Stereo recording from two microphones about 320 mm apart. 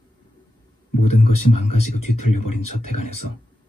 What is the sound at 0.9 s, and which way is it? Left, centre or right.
Speech, left.